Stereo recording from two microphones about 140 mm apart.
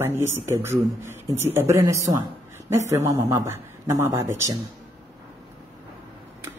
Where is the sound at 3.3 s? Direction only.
20° right (ahead or behind).